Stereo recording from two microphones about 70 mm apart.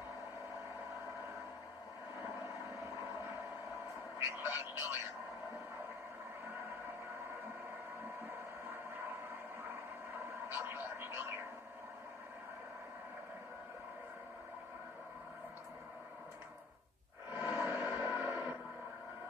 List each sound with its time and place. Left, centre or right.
2.2 s vehicle: right
4.4 s speech: right
10.1 s radio: right
17.3 s a sound: right